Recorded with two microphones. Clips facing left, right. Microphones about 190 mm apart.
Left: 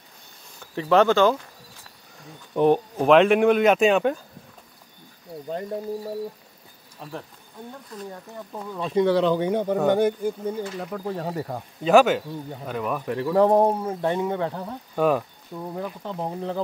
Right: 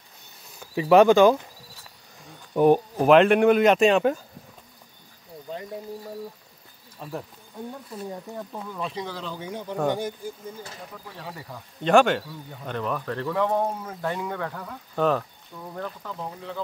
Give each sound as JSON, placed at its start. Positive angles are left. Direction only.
{"t": 0.6, "sound": "speech", "side_deg": -10}
{"t": 2.5, "sound": "speech", "side_deg": -10}
{"t": 7.0, "sound": "speech", "side_deg": -5}
{"t": 8.9, "sound": "speech", "side_deg": 70}
{"t": 11.1, "sound": "speech", "side_deg": 40}
{"t": 11.8, "sound": "speech", "side_deg": 5}
{"t": 13.3, "sound": "speech", "side_deg": 35}
{"t": 15.0, "sound": "speech", "side_deg": 10}
{"t": 15.5, "sound": "speech", "side_deg": 35}